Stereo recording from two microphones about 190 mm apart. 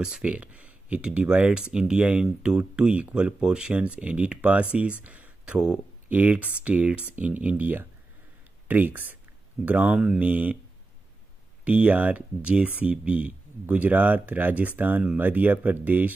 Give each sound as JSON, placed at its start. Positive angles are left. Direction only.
{"t": 0.0, "sound": "speech", "side_deg": -5}
{"t": 11.6, "sound": "speech", "side_deg": -5}